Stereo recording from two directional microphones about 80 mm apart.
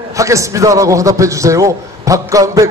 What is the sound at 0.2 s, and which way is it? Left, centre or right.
A man's voice, right.